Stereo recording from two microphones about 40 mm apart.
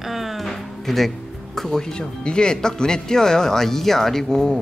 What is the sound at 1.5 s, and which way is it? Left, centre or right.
Speech, centre.